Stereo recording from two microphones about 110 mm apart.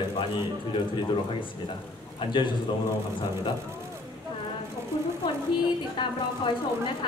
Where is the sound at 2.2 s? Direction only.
45° left (ahead or behind).